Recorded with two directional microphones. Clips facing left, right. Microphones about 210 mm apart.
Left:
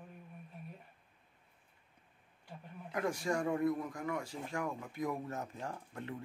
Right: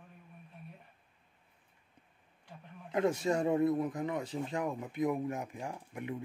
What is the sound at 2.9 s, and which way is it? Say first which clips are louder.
Speech: right 5 dB; 25° right (ahead or behind).